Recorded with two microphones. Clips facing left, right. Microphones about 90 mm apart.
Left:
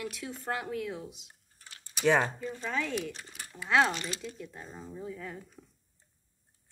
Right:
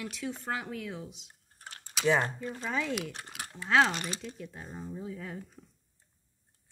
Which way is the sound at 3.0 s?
65° right (ahead or behind).